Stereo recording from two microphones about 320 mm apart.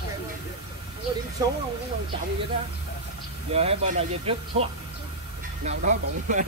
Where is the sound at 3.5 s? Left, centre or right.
Centre.